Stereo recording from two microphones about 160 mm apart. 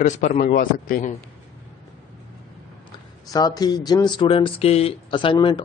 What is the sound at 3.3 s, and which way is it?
Speech, 25° left (ahead or behind).